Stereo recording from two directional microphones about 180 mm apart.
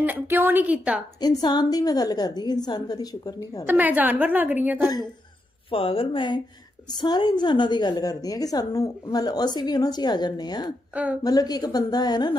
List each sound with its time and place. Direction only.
0.0 s a woman's voice: 10° right (ahead or behind)
1.2 s a woman's voice: 25° left (ahead or behind)
3.6 s a woman's voice: 10° right (ahead or behind)
5.7 s a woman's voice: 30° left (ahead or behind)